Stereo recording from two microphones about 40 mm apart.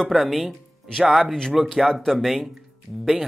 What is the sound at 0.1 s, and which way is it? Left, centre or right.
Speech, centre.